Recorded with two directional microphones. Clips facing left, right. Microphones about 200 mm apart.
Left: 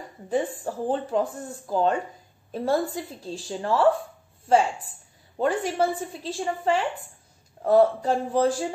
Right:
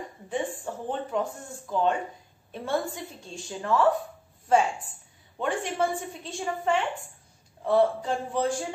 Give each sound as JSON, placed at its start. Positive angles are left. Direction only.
{"t": 0.3, "sound": "a woman's voice", "side_deg": 35}
{"t": 5.4, "sound": "a woman's voice", "side_deg": 35}